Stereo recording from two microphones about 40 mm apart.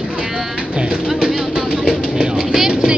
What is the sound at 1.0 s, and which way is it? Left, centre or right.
Music, centre.